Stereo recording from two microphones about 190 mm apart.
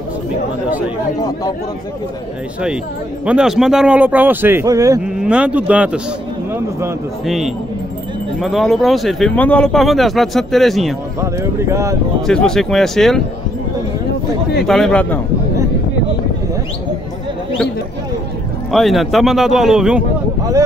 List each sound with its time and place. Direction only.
3.3 s speech: 5° right (ahead or behind)
5.0 s speech: 5° right (ahead or behind)
7.2 s speech: centre (ahead or behind)
11.3 s speech: 15° right (ahead or behind)
12.3 s speech: 5° left (ahead or behind)
14.7 s speech: 5° left (ahead or behind)
18.7 s speech: centre (ahead or behind)